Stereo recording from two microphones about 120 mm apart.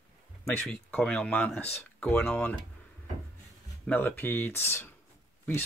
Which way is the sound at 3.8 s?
15° left (ahead or behind).